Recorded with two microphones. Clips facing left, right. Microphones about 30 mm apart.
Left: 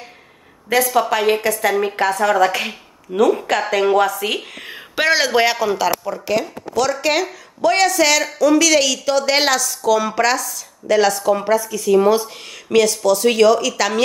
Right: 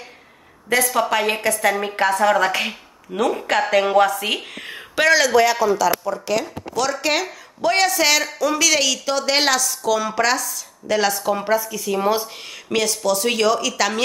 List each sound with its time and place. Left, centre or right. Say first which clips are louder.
0.7 s speech: left 2 dB; centre
5.0 s a man's voice: right 1 dB; centre
5.3 s a man's voice: even; left
6.0 s speech: left 2 dB; centre